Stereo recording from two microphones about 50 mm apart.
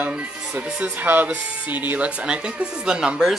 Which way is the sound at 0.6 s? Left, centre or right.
Centre.